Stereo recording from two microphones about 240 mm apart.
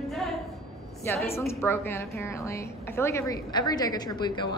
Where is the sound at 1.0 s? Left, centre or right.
Centre.